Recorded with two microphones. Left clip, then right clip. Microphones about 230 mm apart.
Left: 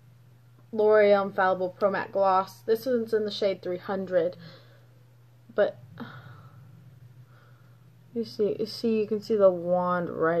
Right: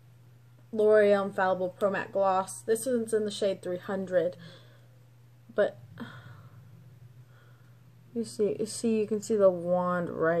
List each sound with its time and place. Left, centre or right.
0.7 s speech: centre
5.5 s a sound: centre
8.2 s speech: centre